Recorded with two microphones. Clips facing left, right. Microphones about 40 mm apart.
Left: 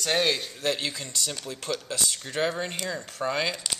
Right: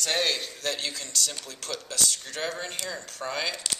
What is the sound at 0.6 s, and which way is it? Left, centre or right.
Speech, centre.